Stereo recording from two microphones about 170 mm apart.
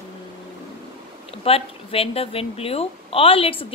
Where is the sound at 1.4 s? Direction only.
35° left (ahead or behind).